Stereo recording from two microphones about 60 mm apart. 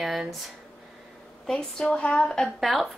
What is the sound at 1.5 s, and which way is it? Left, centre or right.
A woman's voice, centre.